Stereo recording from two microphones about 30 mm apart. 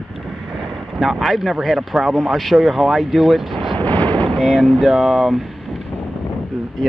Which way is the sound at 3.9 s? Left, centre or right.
Left.